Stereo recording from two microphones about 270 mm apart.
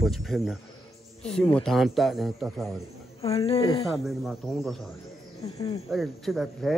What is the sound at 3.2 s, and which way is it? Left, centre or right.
Speech, left.